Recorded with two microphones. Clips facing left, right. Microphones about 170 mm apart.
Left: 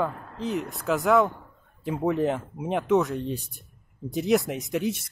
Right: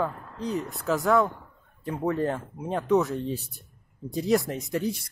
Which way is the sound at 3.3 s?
20° left (ahead or behind).